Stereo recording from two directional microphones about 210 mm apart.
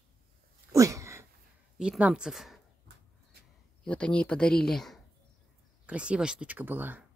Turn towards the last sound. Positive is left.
turn(degrees=-10)  # may be behind; listen again after turning